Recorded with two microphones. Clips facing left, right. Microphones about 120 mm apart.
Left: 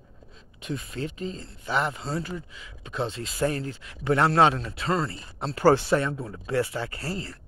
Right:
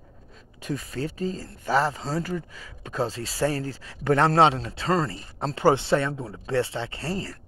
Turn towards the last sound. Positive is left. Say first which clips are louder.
# right 2 dB
turn(degrees=-30)  # may be behind; listen again after turning